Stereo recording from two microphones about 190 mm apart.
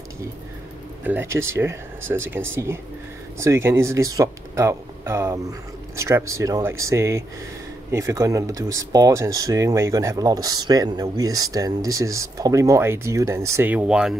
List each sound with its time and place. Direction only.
1.0 s speech: 10° right (ahead or behind)